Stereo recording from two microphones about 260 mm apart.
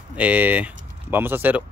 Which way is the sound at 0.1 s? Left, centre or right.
Centre.